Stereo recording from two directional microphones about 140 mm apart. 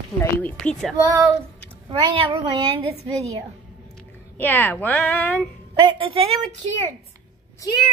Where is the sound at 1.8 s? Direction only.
35° right (ahead or behind).